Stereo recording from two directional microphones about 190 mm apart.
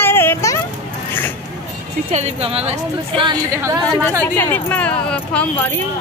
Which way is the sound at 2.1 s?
35° right (ahead or behind).